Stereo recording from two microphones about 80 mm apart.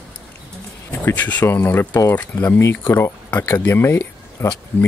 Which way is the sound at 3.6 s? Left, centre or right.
Left.